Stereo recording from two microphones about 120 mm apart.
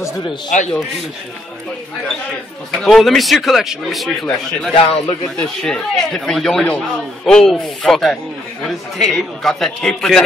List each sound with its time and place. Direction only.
0.5 s a man's voice: 90° left
2.7 s a man's voice: centre (ahead or behind)
4.7 s a man's voice: 50° left (ahead or behind)
5.6 s a man's voice: 5° left (ahead or behind)